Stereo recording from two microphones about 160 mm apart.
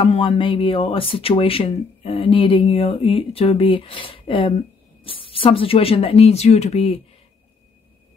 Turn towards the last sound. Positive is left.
turn(degrees=40)  # may be behind; listen again after turning